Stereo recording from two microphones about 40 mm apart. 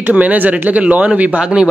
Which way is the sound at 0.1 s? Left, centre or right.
Right.